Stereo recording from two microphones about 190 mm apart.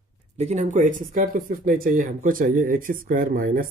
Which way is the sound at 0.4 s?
35° right (ahead or behind).